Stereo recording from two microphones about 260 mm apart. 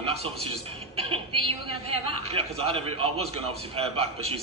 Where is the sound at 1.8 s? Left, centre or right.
Right.